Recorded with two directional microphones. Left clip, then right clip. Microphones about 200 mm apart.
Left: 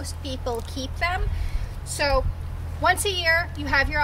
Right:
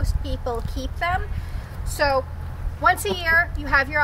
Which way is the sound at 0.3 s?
15° right (ahead or behind).